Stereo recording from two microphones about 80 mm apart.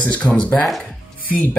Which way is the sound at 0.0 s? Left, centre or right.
Centre.